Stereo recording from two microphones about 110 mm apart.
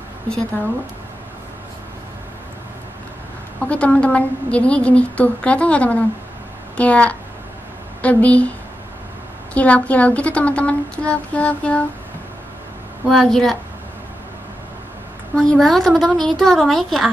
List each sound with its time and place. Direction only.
3.6 s a woman's voice: 10° left (ahead or behind)
13.1 s a woman's voice: 5° left (ahead or behind)
15.3 s a woman's voice: 5° left (ahead or behind)